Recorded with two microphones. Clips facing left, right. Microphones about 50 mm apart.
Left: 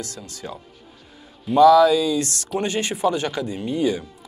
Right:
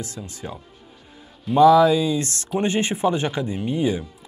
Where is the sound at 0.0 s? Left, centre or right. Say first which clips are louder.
Even; right.